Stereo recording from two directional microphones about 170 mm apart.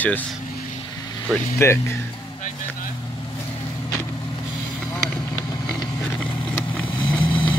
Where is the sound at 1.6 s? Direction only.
15° left (ahead or behind).